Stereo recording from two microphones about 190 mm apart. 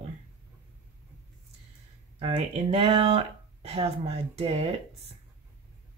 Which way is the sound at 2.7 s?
30° right (ahead or behind).